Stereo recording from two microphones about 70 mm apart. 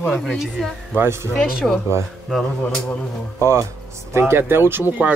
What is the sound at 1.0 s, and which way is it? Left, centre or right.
Speech, right.